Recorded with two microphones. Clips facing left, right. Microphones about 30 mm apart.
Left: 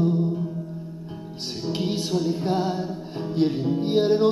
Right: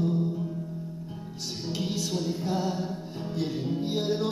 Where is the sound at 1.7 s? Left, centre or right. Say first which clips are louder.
Left 6 dB; left.